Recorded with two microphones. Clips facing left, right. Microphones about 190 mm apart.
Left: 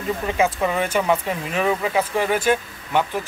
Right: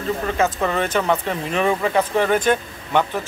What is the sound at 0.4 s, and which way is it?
Speech, 10° left (ahead or behind).